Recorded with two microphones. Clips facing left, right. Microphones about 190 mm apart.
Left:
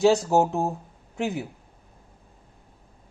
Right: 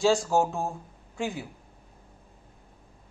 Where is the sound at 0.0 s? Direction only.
20° left (ahead or behind).